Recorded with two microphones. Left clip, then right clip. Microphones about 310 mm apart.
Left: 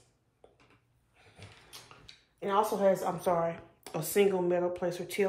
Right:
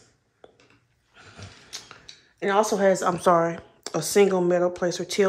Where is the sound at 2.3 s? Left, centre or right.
Right.